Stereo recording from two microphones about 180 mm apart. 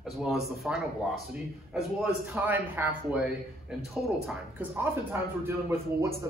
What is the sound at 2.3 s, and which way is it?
A man's voice, 10° right (ahead or behind).